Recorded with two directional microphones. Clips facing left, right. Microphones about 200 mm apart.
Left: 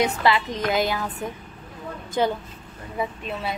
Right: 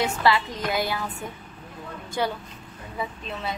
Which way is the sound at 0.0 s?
20° left (ahead or behind).